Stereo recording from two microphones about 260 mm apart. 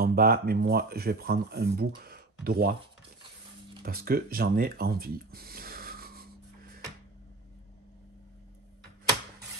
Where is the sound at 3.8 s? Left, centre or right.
Right.